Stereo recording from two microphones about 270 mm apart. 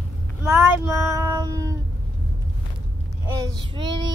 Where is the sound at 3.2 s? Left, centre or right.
Centre.